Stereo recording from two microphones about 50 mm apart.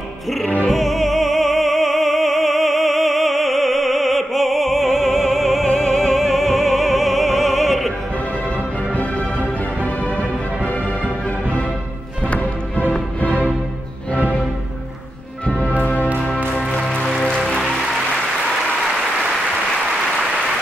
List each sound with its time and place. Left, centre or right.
0.7 s music: centre
12.3 s music: left
15.8 s music: left
16.5 s music: centre
17.6 s music: centre